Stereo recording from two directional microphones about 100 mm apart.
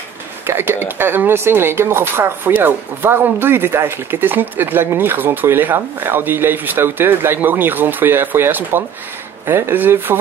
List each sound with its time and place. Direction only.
0.5 s speech: 25° right (ahead or behind)